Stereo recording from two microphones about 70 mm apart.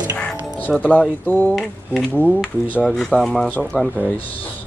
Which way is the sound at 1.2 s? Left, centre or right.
Left.